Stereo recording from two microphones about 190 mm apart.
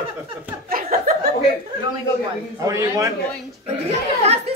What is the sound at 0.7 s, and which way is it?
Chuckle, 50° right (ahead or behind).